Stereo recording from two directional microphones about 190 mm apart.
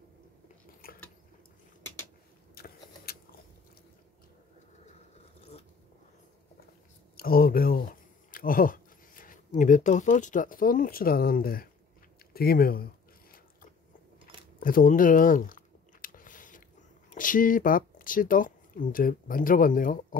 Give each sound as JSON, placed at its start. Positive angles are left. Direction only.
{"t": 0.8, "sound": "a sound", "side_deg": 50}
{"t": 2.5, "sound": "vehicle", "side_deg": 55}
{"t": 7.2, "sound": "speech", "side_deg": 50}
{"t": 14.6, "sound": "chewing", "side_deg": 45}
{"t": 17.1, "sound": "speech", "side_deg": 45}